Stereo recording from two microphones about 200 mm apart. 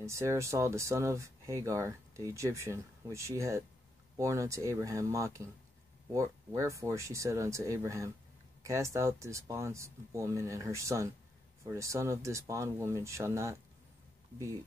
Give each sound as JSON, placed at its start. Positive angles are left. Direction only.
{"t": 0.0, "sound": "speech", "side_deg": -15}